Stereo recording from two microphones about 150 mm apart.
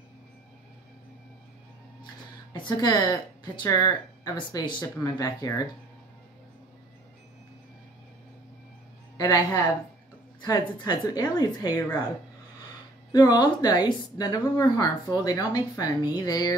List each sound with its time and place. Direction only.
2.5 s a woman's voice: 25° left (ahead or behind)
9.1 s a sound: 25° left (ahead or behind)
10.4 s a woman's voice: 30° left (ahead or behind)
13.1 s a woman's voice: 30° left (ahead or behind)